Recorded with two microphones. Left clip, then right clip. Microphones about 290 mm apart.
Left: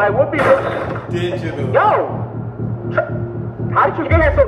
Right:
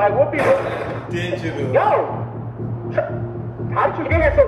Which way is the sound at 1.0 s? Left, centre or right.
Centre.